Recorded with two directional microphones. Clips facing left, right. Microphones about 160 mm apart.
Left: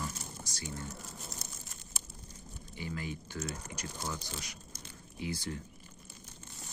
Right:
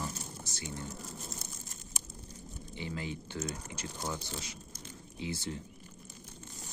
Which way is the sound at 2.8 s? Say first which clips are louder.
Right 1 dB; 20° right (ahead or behind).